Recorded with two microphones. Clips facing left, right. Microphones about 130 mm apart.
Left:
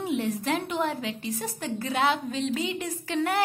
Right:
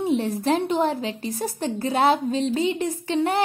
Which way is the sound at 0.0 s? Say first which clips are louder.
Right 5 dB; 35° right (ahead or behind).